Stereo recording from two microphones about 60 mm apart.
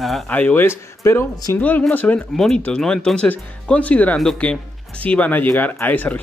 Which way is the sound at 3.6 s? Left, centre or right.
Left.